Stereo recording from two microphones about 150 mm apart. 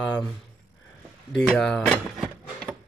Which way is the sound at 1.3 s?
5° left (ahead or behind).